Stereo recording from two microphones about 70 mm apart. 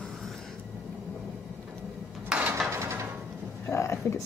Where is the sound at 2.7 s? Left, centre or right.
Right.